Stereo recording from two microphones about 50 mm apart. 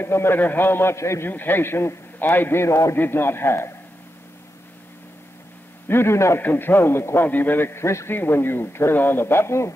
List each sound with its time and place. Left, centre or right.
0.0 s speech: left
0.4 s speech: left
0.9 s a man's voice: left
1.3 s speech: left
2.1 s speech: left
2.6 s a man's voice: left
3.0 s speech: left
5.9 s a man's voice: left
6.4 s speech: left
7.2 s a man's voice: left
7.6 s a man's voice: left
8.1 s speech: left